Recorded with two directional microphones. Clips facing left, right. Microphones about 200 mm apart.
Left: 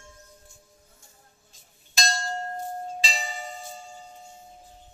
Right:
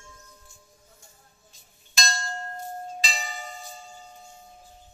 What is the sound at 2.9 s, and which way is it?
Music, 30° left (ahead or behind).